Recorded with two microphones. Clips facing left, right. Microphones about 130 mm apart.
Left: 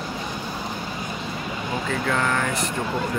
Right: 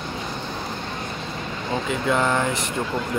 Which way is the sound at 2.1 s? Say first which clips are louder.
Right 4 dB; 20° right (ahead or behind).